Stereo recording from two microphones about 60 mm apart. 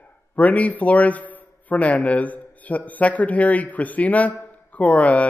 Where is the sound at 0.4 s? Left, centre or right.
Left.